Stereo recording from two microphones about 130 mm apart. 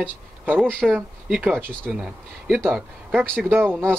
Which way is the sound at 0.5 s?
5° left (ahead or behind).